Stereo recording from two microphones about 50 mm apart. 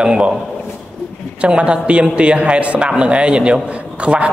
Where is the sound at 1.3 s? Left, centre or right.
Right.